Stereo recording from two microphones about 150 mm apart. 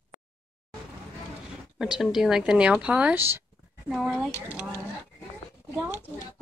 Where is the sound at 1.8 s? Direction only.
5° right (ahead or behind).